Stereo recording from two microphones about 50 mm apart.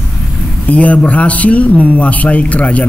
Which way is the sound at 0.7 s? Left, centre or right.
Left.